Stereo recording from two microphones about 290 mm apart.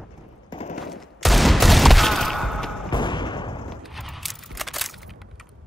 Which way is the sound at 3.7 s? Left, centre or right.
Centre.